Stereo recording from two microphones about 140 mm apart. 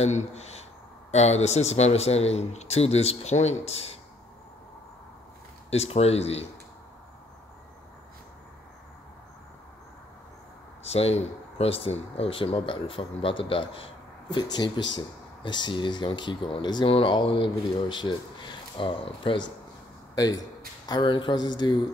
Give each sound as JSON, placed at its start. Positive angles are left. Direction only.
{"t": 0.0, "sound": "speech", "side_deg": 55}
{"t": 5.7, "sound": "speech", "side_deg": 50}
{"t": 10.8, "sound": "speech", "side_deg": 50}